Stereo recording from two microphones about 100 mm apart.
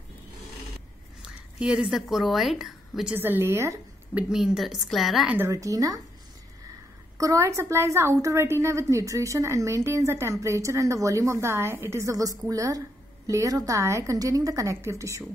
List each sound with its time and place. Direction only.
1.2 s a woman's voice: 10° right (ahead or behind)
3.2 s a woman's voice: 25° right (ahead or behind)
4.1 s a woman's voice: 10° right (ahead or behind)
5.5 s a woman's voice: 35° right (ahead or behind)
7.2 s a woman's voice: 30° right (ahead or behind)